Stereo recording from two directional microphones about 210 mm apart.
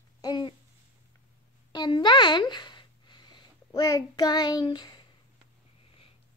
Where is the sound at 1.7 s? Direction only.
20° left (ahead or behind).